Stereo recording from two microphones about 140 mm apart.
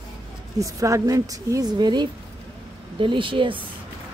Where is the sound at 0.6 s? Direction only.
25° right (ahead or behind).